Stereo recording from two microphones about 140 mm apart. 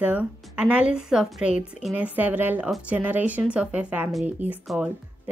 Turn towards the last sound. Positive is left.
turn(degrees=-10)  # may be behind; listen again after turning